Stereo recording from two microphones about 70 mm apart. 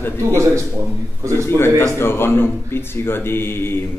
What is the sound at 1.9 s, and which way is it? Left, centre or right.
Speech, left.